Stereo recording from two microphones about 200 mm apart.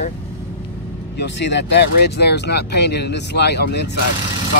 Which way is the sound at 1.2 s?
60° left (ahead or behind).